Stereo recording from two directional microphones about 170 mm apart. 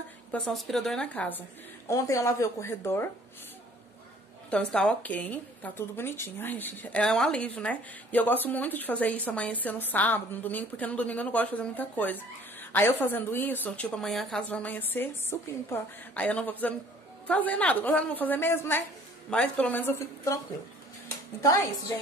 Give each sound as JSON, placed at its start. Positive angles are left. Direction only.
{"t": 0.3, "sound": "a woman's voice", "side_deg": 0}
{"t": 4.5, "sound": "a woman's voice", "side_deg": 5}
{"t": 21.4, "sound": "a woman's voice", "side_deg": 20}